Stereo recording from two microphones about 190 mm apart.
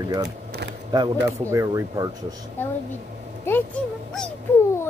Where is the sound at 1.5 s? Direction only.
15° right (ahead or behind).